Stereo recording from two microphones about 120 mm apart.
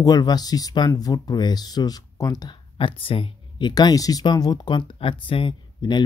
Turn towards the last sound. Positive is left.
turn(degrees=40)  # may be behind; listen again after turning